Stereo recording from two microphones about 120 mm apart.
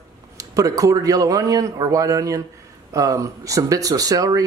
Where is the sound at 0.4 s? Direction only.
30° right (ahead or behind).